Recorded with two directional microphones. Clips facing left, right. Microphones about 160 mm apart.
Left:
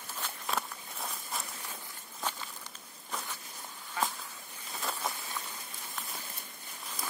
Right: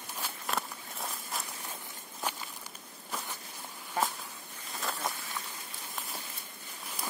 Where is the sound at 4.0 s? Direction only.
40° right (ahead or behind).